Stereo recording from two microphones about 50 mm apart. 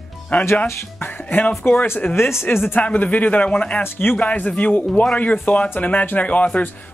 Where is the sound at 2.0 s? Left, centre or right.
Left.